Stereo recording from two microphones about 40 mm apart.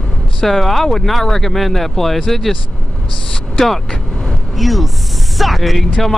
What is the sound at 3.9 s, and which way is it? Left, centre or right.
Vehicle, left.